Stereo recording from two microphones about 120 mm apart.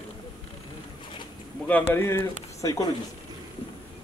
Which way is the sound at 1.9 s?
20° left (ahead or behind).